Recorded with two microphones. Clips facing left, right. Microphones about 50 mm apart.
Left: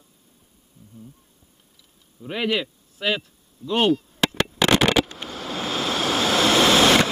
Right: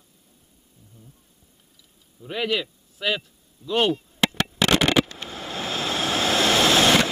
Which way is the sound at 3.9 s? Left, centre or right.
Centre.